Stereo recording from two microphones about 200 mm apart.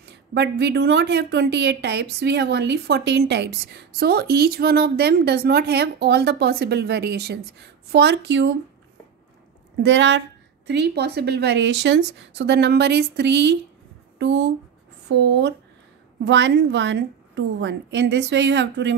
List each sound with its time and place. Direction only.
0.3 s a woman's voice: 55° right (ahead or behind)
9.8 s a woman's voice: 65° right (ahead or behind)